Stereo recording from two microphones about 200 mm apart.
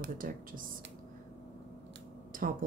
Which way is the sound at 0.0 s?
45° right (ahead or behind).